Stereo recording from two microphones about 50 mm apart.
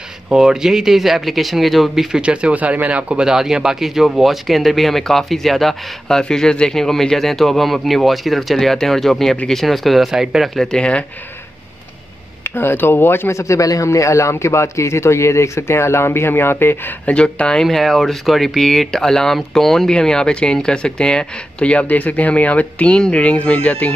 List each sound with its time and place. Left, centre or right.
0.3 s speech: centre
2.1 s speech: right
10.5 s speech: centre
10.8 s speech: left
12.4 s speech: left
13.3 s a man's voice: left
17.0 s speech: left
17.6 s speech: centre
19.9 s speech: centre